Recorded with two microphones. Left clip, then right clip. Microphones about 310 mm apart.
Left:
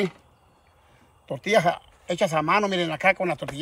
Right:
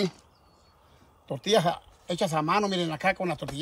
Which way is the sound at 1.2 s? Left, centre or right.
Centre.